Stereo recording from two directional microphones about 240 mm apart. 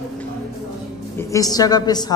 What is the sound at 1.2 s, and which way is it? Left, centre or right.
Speech, centre.